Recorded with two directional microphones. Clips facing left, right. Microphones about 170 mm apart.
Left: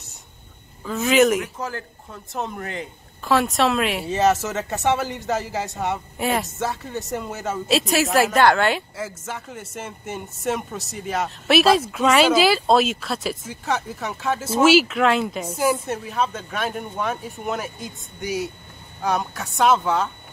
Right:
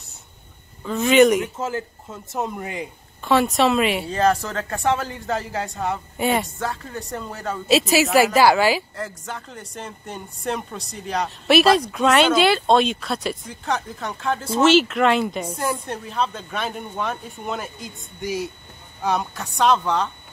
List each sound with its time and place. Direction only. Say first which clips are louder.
0.8 s speech: right 2 dB; centre (ahead or behind)
1.4 s speech: right 4 dB; 20° right (ahead or behind)
3.3 s speech: right 2 dB; centre (ahead or behind)